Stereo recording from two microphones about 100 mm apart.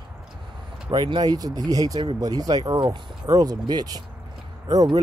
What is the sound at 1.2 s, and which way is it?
Speech, 40° right (ahead or behind).